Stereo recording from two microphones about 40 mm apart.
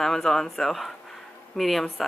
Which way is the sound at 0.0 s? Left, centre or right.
Centre.